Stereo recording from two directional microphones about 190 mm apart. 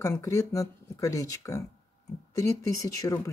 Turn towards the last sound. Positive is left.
turn(degrees=15)  # may be behind; listen again after turning